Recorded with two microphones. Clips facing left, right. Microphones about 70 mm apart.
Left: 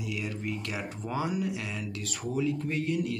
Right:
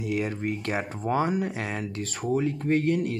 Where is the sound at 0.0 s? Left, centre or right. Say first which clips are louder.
Right 7 dB; right.